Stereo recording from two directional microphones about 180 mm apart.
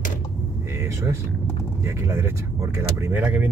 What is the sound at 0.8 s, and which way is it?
Speech, 15° right (ahead or behind).